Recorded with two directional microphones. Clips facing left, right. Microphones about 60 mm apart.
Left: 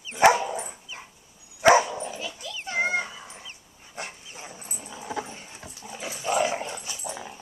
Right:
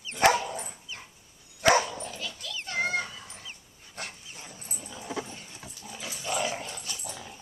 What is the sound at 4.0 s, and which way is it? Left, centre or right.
Dog, centre.